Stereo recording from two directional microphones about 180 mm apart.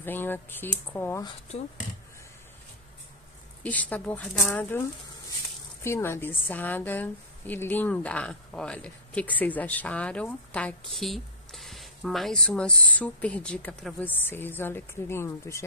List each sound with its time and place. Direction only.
0.0 s a woman's voice: 10° left (ahead or behind)
1.5 s speech: 35° left (ahead or behind)
3.6 s a woman's voice: 10° left (ahead or behind)
5.9 s a woman's voice: 15° left (ahead or behind)